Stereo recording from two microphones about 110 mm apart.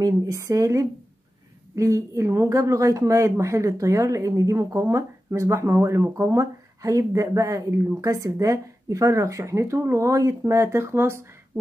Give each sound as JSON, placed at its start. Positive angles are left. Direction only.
{"t": 0.0, "sound": "a woman's voice", "side_deg": -30}